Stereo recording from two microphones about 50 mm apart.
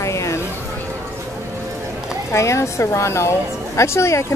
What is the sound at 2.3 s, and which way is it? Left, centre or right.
Speech, left.